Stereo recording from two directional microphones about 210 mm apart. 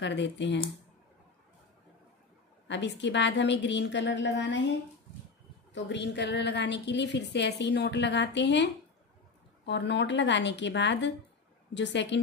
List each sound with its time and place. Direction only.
0.0 s a woman's voice: 55° left (ahead or behind)
2.7 s a woman's voice: 55° left (ahead or behind)
5.9 s a woman's voice: 55° left (ahead or behind)